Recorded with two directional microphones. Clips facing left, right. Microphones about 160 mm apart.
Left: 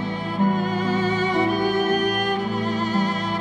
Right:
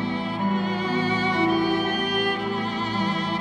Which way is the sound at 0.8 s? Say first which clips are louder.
Left 2 dB; 45° left (ahead or behind).